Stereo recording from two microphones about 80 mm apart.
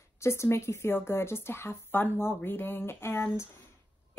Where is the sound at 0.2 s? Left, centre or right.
Left.